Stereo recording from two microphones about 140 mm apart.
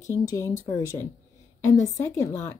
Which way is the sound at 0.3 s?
20° left (ahead or behind).